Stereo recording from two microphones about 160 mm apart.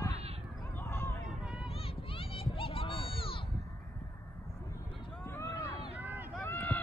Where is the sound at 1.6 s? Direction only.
35° left (ahead or behind).